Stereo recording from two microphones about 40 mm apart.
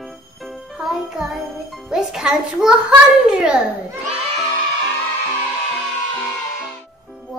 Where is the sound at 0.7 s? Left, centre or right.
Centre.